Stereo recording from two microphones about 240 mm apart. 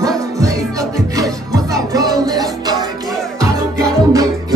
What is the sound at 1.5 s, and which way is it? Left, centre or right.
Music, centre.